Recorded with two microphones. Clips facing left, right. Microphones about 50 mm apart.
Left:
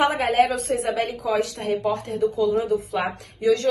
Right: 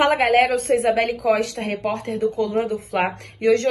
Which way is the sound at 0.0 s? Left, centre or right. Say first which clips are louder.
Right 3 dB; right.